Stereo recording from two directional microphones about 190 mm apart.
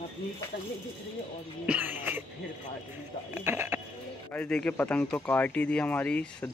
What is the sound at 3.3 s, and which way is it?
Speech, 10° right (ahead or behind).